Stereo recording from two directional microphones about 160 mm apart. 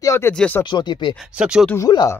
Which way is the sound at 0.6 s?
30° left (ahead or behind).